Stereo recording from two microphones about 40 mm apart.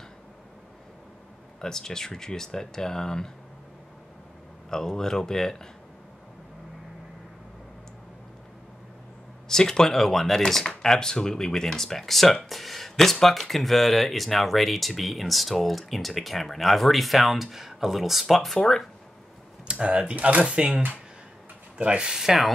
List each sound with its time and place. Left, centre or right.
1.6 s speech: centre
4.6 s speech: centre
9.5 s speech: centre
19.7 s speech: right
21.7 s speech: right
22.2 s speech: centre